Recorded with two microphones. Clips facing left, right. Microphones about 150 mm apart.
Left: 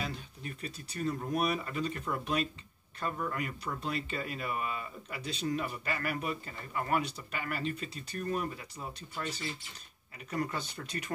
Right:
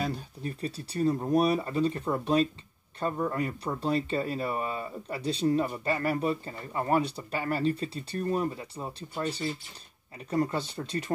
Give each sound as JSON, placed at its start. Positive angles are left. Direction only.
{"t": 0.0, "sound": "speech", "side_deg": -40}